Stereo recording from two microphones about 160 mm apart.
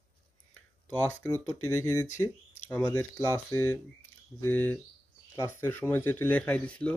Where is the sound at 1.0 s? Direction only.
10° left (ahead or behind).